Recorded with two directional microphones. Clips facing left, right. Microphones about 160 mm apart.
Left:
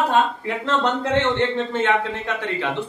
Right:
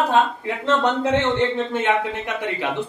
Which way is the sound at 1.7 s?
15° right (ahead or behind).